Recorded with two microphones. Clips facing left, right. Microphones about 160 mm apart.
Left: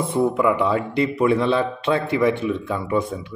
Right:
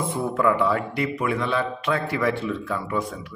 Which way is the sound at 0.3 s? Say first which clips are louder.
Left 2 dB; 15° left (ahead or behind).